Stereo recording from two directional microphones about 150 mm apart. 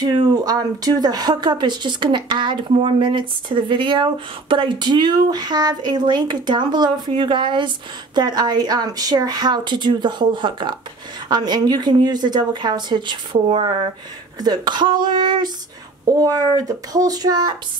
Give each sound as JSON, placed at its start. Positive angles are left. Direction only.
{"t": 0.0, "sound": "speech", "side_deg": -25}